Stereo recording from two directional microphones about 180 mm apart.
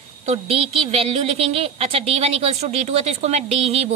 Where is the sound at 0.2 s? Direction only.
35° right (ahead or behind).